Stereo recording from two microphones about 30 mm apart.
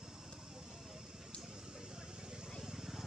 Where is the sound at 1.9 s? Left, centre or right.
Right.